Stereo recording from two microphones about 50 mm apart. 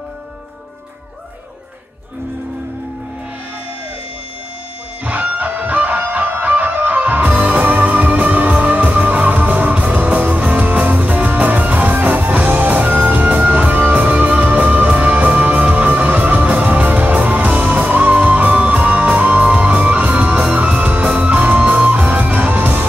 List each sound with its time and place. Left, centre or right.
5.0 s music: right